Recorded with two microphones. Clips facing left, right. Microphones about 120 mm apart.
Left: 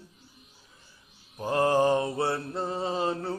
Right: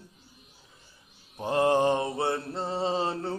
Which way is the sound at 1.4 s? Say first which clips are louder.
Even; 25° right (ahead or behind).